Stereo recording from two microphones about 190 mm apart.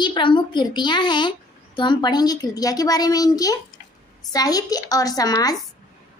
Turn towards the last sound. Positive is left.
turn(degrees=20)  # may be behind; listen again after turning